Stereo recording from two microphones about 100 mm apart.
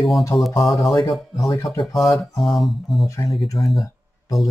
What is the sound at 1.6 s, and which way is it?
Speech, 50° left (ahead or behind).